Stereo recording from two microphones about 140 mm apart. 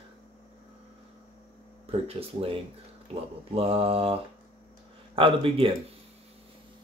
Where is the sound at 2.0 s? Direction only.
45° right (ahead or behind).